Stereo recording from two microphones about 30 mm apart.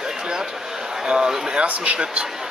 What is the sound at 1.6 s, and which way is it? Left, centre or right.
Speech, right.